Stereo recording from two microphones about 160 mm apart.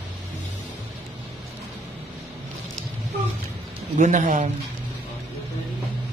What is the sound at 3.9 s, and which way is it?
Speech, 50° right (ahead or behind).